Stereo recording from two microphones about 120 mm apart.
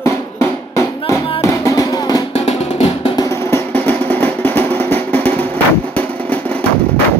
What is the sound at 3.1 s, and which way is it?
Music, 25° left (ahead or behind).